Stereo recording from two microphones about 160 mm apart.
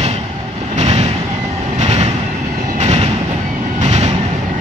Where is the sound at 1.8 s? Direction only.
45° right (ahead or behind).